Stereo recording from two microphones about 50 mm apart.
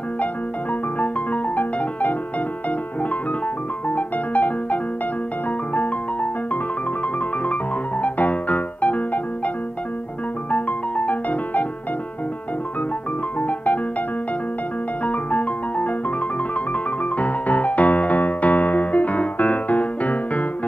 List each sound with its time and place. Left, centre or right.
0.9 s music: left
3.9 s music: left
8.0 s music: left
10.5 s music: left
13.4 s music: left
15.0 s music: left
17.2 s music: left